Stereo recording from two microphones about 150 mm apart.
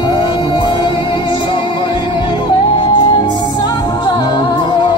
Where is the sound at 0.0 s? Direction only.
30° left (ahead or behind).